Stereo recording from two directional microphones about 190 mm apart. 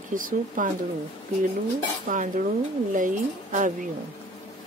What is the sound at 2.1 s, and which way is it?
Speech, 45° right (ahead or behind).